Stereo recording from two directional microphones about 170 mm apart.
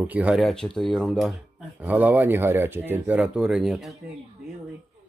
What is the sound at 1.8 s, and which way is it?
Speech, 10° right (ahead or behind).